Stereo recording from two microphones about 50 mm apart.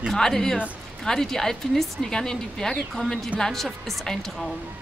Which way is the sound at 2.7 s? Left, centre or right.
Centre.